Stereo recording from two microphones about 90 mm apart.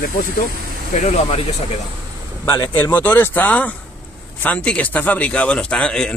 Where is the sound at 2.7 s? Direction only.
25° left (ahead or behind).